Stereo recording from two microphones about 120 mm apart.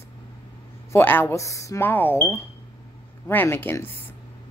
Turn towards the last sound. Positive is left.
turn(degrees=20)  # may be behind; listen again after turning